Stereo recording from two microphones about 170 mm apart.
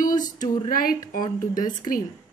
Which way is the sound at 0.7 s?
60° left (ahead or behind).